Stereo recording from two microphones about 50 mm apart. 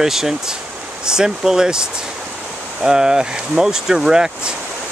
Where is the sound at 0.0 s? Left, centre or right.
Centre.